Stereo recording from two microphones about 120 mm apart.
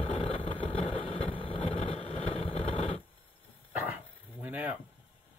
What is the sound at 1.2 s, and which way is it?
Vehicle, 50° left (ahead or behind).